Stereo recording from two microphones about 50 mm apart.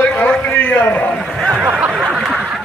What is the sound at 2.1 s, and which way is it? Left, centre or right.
Snicker, centre.